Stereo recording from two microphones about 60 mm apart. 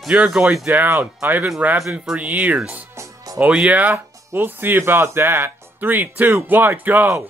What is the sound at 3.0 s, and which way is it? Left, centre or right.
Music, right.